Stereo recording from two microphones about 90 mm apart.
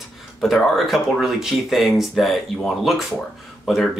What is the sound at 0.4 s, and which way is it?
Speech, centre (ahead or behind).